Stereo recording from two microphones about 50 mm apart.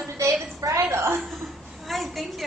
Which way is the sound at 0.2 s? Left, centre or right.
Right.